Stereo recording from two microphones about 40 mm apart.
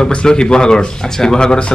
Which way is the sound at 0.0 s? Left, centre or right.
Left.